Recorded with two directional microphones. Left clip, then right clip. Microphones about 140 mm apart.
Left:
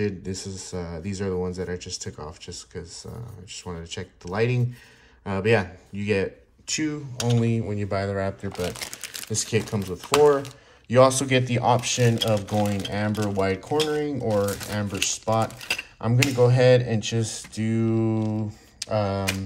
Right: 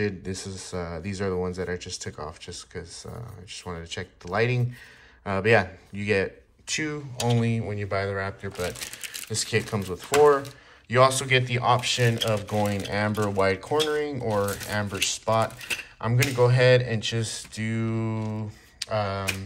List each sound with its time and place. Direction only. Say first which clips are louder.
0.0 s speech: left 1 dB; 25° left (ahead or behind)
10.9 s speech: left 2 dB; 35° left (ahead or behind)
13.1 s speech: right 1 dB; centre (ahead or behind)
13.4 s speech: even; 25° left (ahead or behind); by 19.2 s 40° left (ahead or behind)